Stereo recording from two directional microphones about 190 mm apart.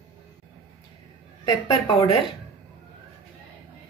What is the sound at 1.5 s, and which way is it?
Speech, 20° left (ahead or behind).